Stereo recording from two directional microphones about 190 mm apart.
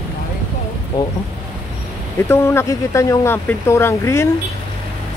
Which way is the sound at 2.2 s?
15° left (ahead or behind).